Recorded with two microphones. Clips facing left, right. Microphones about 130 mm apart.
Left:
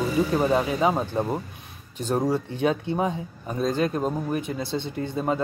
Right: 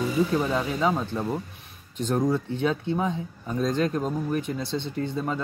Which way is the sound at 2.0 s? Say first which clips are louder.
Even; 10° left (ahead or behind).